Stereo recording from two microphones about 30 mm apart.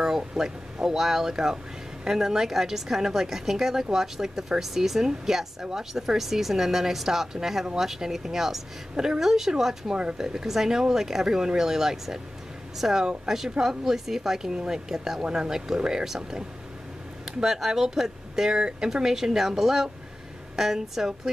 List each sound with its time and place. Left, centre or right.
0.4 s a woman's voice: centre